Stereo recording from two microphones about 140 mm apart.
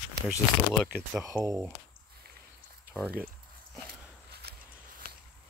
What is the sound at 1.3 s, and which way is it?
Speech, 5° right (ahead or behind).